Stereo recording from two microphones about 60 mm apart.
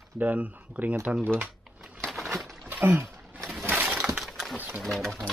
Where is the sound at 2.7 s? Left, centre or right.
Right.